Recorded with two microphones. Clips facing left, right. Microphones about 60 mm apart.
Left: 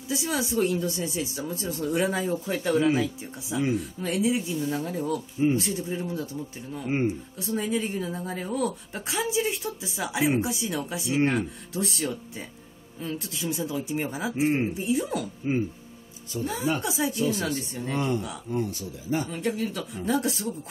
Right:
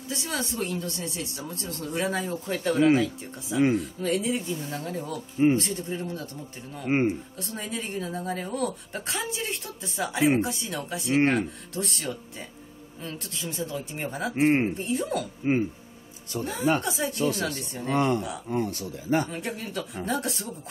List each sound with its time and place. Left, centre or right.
0.1 s speech: centre
7.3 s speech: centre
11.1 s speech: right
11.3 s speech: centre
14.3 s speech: right
14.7 s speech: centre
15.4 s speech: right
16.8 s speech: centre
17.9 s speech: right
19.3 s speech: centre